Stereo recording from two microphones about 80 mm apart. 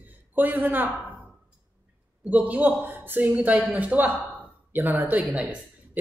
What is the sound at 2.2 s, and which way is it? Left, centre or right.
A man's voice, centre.